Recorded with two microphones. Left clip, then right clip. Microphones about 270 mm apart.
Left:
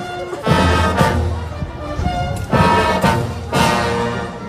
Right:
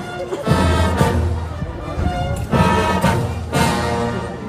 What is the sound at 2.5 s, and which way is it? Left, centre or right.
Music, left.